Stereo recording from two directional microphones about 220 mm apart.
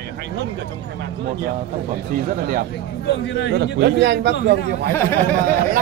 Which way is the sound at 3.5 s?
50° right (ahead or behind).